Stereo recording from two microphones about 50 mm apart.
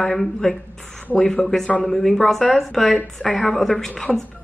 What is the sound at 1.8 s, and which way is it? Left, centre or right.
A woman's voice, centre.